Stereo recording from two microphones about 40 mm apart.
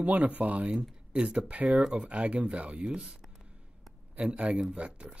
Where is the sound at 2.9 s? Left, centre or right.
Centre.